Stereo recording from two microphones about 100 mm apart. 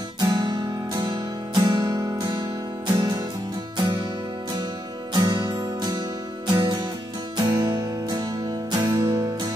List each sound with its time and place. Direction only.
0.2 s music: 45° right (ahead or behind)
5.1 s music: 45° right (ahead or behind)